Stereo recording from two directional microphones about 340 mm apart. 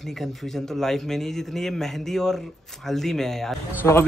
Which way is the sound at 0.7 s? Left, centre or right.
Centre.